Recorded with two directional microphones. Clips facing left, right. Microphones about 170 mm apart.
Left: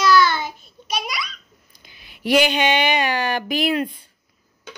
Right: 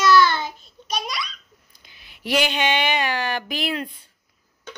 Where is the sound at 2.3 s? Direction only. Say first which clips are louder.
Left 4 dB; 5° left (ahead or behind).